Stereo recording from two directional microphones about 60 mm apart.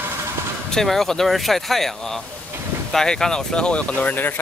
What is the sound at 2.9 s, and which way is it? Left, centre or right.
Speech, centre.